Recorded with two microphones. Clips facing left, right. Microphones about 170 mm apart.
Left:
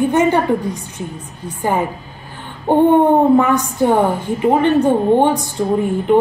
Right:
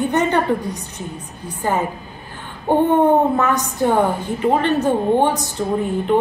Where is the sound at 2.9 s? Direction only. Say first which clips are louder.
Left 4 dB; 15° left (ahead or behind).